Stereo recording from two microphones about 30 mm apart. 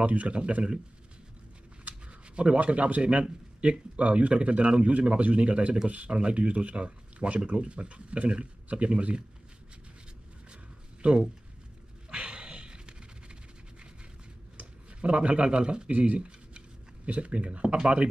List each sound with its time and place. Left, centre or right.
0.0 s speech: right
2.3 s speech: right
11.0 s speech: right
12.1 s a sound: right
15.0 s speech: right
15.9 s speech: right
16.2 s a sound: right